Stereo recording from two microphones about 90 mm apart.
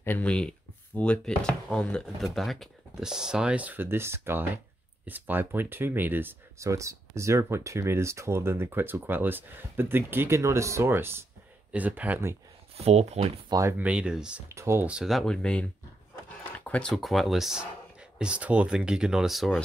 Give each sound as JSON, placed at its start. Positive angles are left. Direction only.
{"t": 0.0, "sound": "speech", "side_deg": 20}
{"t": 0.3, "sound": "speech", "side_deg": 10}
{"t": 6.6, "sound": "speech", "side_deg": -35}
{"t": 13.5, "sound": "speech", "side_deg": -35}
{"t": 13.7, "sound": "speech", "side_deg": -10}
{"t": 14.5, "sound": "speech", "side_deg": -30}
{"t": 15.0, "sound": "speech", "side_deg": 5}
{"t": 16.5, "sound": "a sound", "side_deg": 15}
{"t": 16.9, "sound": "speech", "side_deg": 0}